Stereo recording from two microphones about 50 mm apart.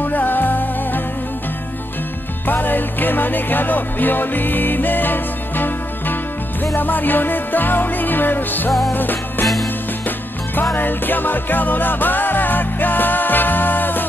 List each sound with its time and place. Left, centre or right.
0.0 s music: left
2.4 s music: left